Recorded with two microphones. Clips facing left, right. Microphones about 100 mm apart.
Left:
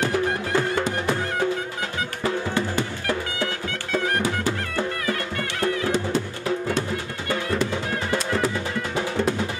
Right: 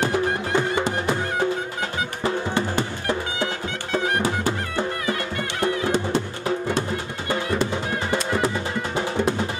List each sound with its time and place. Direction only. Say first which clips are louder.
0.0 s music: right 1 dB; 20° right (ahead or behind)
3.1 s music: right 1 dB; 20° right (ahead or behind)
5.6 s music: right 1 dB; 20° right (ahead or behind)
7.2 s music: right 1 dB; 25° right (ahead or behind)